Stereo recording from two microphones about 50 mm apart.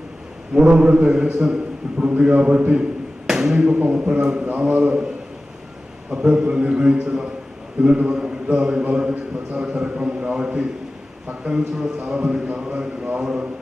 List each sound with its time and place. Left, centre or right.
0.6 s a man's voice: right
2.8 s a sound: centre
3.8 s a man's voice: right
6.0 s a man's voice: centre